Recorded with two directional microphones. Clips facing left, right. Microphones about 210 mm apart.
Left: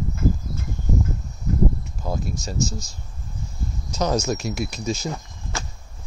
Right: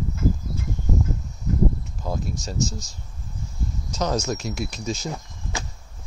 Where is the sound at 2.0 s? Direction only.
10° left (ahead or behind).